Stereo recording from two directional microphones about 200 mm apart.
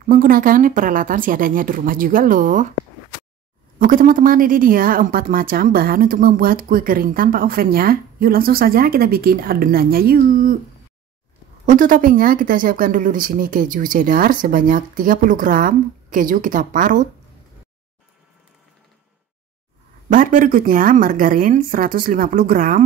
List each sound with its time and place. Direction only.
0.0 s speech: 45° right (ahead or behind)
3.8 s speech: 45° right (ahead or behind)
11.6 s speech: 40° right (ahead or behind)
20.1 s speech: 40° right (ahead or behind)